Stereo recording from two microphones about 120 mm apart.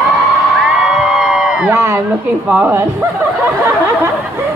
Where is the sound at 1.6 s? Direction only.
20° right (ahead or behind).